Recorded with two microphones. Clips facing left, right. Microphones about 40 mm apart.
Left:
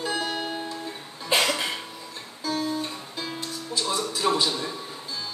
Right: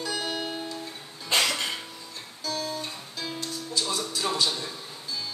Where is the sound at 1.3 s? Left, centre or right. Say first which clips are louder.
Left 2 dB; centre.